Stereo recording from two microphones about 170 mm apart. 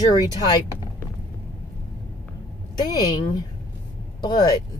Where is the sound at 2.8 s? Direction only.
25° left (ahead or behind).